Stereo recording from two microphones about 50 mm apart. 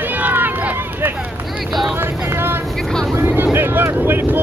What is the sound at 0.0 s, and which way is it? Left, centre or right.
Run, right.